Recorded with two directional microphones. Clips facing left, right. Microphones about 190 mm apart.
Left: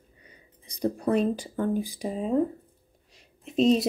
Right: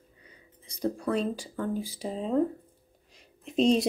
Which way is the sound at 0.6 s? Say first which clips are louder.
Left 3 dB; 15° left (ahead or behind).